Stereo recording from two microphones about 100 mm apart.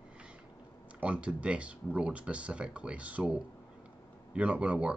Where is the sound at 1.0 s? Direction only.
10° right (ahead or behind).